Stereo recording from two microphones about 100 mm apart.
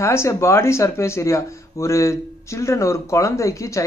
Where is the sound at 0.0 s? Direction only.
25° left (ahead or behind).